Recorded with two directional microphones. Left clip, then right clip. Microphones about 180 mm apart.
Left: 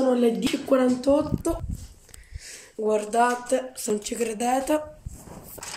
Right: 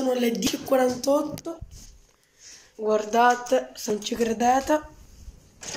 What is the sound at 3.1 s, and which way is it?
Speech, 10° left (ahead or behind).